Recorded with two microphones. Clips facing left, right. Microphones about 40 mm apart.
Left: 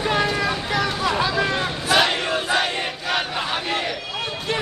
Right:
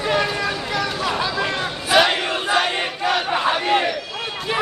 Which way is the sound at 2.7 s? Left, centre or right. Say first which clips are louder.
Right 3 dB; right.